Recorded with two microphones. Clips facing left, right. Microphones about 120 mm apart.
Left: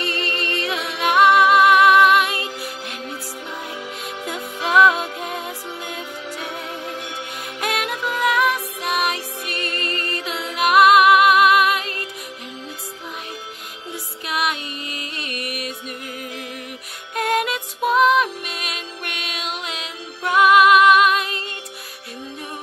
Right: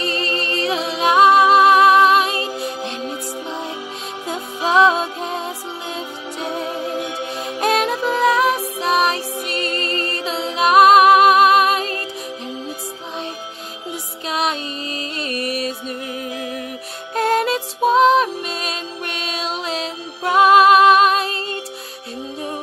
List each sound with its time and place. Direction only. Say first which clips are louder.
0.0 s music: right 3 dB; 30° right (ahead or behind)
4.3 s music: right 3 dB; 30° right (ahead or behind)
14.2 s music: right 2 dB; 30° right (ahead or behind)
17.1 s music: right 4 dB; 30° right (ahead or behind)